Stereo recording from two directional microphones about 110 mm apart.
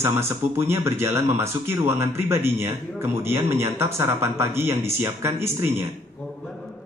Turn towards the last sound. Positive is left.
turn(degrees=-25)  # may be behind; listen again after turning